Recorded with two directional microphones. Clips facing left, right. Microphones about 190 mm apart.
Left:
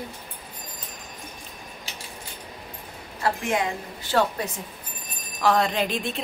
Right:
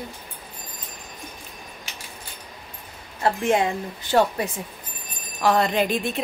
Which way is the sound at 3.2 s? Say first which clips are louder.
Right 4 dB; 25° right (ahead or behind).